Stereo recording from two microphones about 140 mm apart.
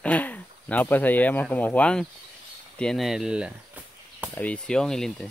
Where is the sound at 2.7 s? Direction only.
5° left (ahead or behind).